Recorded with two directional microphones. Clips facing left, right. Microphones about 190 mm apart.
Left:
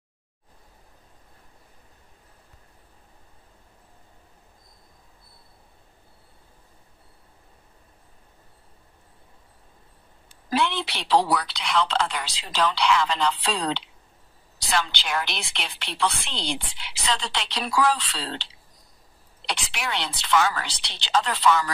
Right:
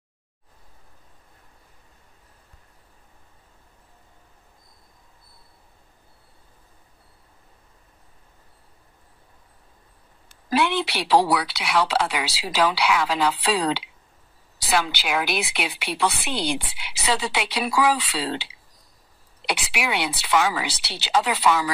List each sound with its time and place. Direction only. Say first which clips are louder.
10.5 s a woman's voice: right 3 dB; 10° right (ahead or behind)